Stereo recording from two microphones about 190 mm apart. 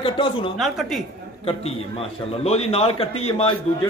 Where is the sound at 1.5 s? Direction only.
30° left (ahead or behind).